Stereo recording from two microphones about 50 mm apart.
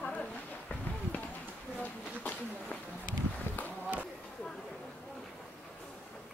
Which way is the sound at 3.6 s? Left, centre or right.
Left.